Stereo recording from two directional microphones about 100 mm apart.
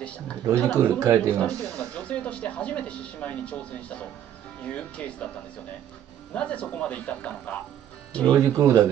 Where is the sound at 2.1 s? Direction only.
10° left (ahead or behind).